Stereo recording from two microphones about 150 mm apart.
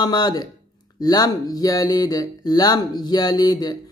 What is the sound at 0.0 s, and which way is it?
Speech, 30° left (ahead or behind).